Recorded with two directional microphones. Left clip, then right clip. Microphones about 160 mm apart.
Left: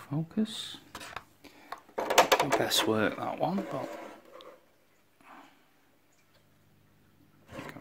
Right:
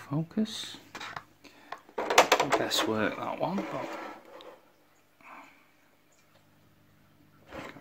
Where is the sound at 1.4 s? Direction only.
15° left (ahead or behind).